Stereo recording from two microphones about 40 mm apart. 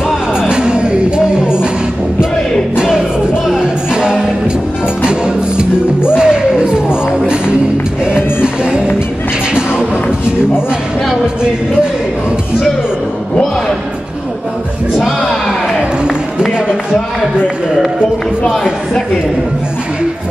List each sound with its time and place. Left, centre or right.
0.4 s music: centre
2.7 s music: centre
8.1 s music: left
16.5 s a sound: right